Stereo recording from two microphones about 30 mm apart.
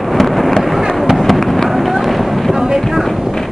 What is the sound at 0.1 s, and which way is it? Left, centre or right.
Thunder, centre.